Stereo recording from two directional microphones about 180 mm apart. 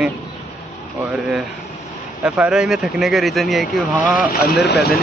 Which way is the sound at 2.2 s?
5° right (ahead or behind).